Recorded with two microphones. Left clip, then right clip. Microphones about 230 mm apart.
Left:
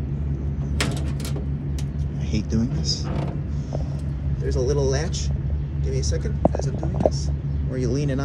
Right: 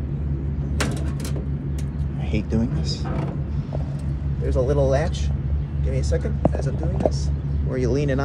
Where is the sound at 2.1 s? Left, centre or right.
Centre.